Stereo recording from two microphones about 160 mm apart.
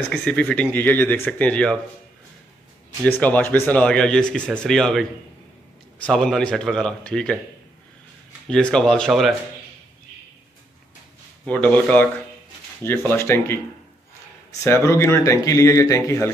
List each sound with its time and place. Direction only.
0.1 s speech: 5° left (ahead or behind)
3.0 s speech: 10° left (ahead or behind)
6.0 s a man's voice: 5° left (ahead or behind)
8.5 s a man's voice: 5° left (ahead or behind)
11.4 s speech: 10° left (ahead or behind)
13.1 s speech: 15° left (ahead or behind)
14.6 s speech: 15° left (ahead or behind)